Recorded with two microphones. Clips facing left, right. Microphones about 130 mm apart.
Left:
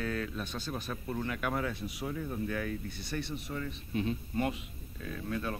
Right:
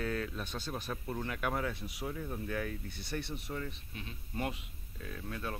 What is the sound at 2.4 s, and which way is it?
Speech, 20° right (ahead or behind).